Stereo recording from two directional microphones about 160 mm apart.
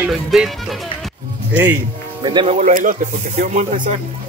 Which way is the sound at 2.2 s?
30° right (ahead or behind).